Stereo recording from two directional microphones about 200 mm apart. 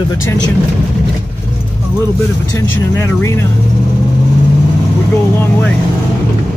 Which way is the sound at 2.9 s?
15° left (ahead or behind).